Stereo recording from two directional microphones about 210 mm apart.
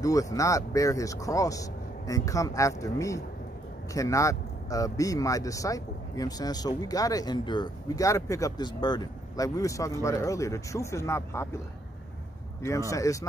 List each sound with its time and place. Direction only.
0.0 s speech: 15° left (ahead or behind)
12.9 s speech: 15° left (ahead or behind)